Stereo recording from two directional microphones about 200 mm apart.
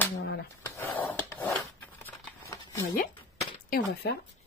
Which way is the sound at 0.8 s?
10° left (ahead or behind).